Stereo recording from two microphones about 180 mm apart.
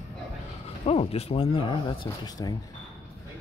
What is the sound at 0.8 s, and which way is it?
Speech, 35° left (ahead or behind).